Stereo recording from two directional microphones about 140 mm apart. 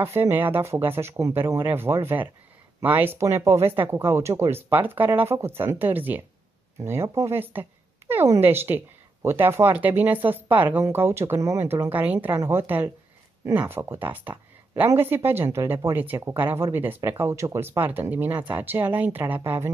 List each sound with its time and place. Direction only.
0.0 s speech: 15° right (ahead or behind)